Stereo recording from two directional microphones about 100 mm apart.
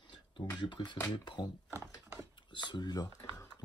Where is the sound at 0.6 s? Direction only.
50° left (ahead or behind).